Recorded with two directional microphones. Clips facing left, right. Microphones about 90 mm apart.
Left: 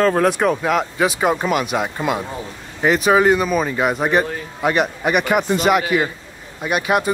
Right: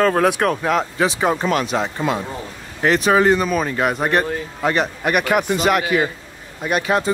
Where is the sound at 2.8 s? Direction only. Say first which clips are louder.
Left 1 dB; 5° left (ahead or behind).